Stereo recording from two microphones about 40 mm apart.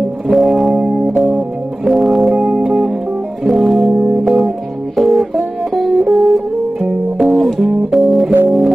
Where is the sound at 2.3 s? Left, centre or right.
Right.